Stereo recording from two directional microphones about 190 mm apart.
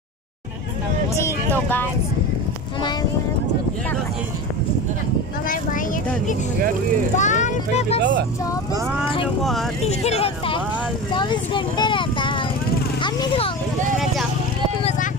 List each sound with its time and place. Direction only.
1.1 s speech: 10° left (ahead or behind)
7.2 s speech: 40° left (ahead or behind)
8.0 s speech: 70° right (ahead or behind)
9.4 s speech: centre (ahead or behind)
9.8 s speech: 35° left (ahead or behind)